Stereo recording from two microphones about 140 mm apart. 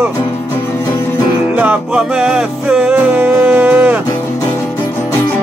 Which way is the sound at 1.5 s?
10° right (ahead or behind).